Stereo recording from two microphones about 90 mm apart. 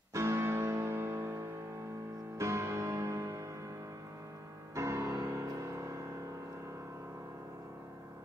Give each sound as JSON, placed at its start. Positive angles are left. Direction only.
{"t": 0.1, "sound": "music", "side_deg": -30}
{"t": 4.7, "sound": "music", "side_deg": -35}